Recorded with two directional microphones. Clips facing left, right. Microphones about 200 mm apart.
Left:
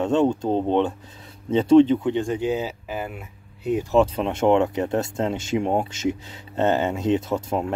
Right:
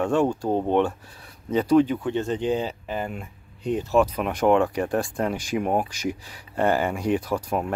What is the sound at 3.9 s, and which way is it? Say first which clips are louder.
Speech: left 2 dB; 25° left (ahead or behind).